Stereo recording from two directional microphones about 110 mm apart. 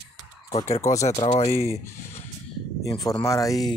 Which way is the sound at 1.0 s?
85° left.